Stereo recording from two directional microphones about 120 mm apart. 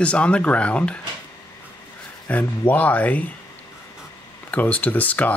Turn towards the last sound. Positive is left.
turn(degrees=15)  # may be behind; listen again after turning